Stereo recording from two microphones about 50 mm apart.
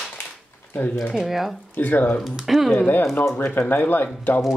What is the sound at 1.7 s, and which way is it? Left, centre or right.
Speech, left.